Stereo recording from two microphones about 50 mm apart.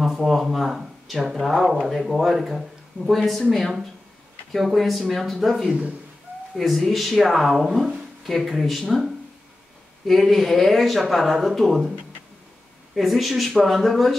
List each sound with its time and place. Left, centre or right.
0.0 s speech: centre
5.7 s speech: right
6.5 s speech: centre
12.9 s speech: centre